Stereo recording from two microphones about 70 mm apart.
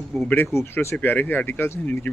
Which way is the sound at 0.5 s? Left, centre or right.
Left.